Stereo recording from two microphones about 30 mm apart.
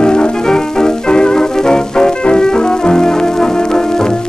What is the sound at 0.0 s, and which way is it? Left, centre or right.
Music, left.